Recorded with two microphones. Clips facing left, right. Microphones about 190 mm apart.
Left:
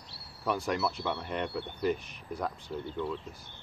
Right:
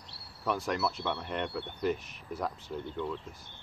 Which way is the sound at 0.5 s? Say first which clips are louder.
Left 1 dB; centre (ahead or behind).